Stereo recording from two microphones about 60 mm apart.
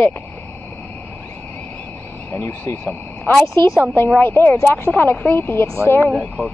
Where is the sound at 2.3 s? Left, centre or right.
Left.